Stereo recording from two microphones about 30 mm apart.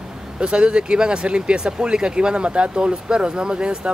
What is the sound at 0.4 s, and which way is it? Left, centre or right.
Speech, right.